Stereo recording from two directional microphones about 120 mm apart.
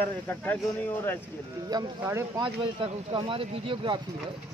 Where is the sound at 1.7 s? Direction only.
35° right (ahead or behind).